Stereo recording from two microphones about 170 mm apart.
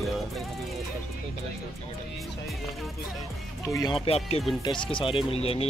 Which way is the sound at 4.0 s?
35° left (ahead or behind).